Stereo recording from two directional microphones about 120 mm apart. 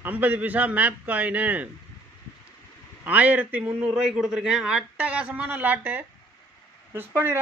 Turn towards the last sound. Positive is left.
turn(degrees=-15)  # may be behind; listen again after turning